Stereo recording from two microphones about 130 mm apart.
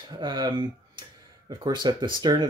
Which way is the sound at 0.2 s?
35° right (ahead or behind).